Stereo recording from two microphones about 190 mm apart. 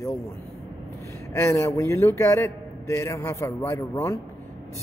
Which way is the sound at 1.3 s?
15° left (ahead or behind).